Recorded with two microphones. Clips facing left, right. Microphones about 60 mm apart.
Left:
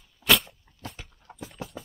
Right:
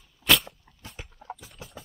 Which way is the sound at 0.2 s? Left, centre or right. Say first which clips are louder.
Even; centre.